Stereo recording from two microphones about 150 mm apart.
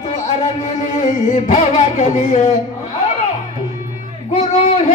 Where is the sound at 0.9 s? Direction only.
50° left (ahead or behind).